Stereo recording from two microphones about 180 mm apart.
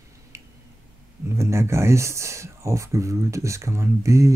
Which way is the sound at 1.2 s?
15° right (ahead or behind).